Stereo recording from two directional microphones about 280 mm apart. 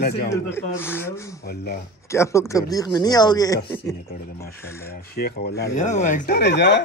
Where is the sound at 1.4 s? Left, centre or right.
Left.